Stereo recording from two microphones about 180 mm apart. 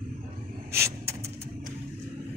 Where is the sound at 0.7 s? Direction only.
15° right (ahead or behind).